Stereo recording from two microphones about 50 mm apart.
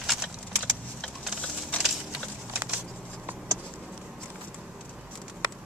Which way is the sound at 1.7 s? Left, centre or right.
Left.